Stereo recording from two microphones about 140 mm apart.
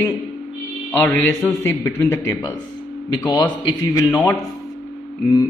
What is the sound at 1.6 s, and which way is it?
Speech, 20° left (ahead or behind).